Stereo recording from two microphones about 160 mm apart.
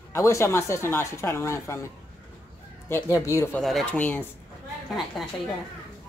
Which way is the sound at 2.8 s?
15° left (ahead or behind).